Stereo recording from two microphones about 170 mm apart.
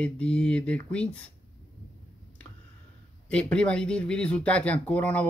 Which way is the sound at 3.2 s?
5° left (ahead or behind).